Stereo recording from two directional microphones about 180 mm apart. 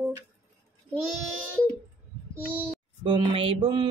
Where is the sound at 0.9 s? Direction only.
5° left (ahead or behind).